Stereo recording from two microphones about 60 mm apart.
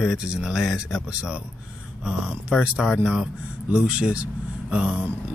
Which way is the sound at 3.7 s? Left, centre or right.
Centre.